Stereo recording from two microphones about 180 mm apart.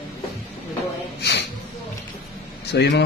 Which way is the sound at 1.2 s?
65° left (ahead or behind).